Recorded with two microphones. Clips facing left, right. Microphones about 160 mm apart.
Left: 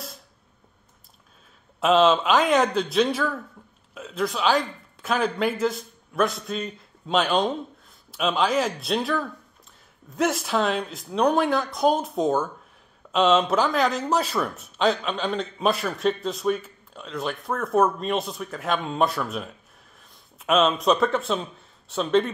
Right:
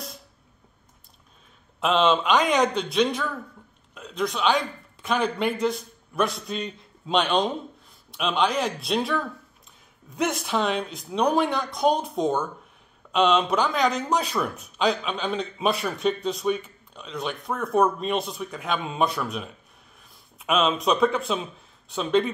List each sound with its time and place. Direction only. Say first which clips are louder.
1.8 s speech: left 3 dB; centre (ahead or behind)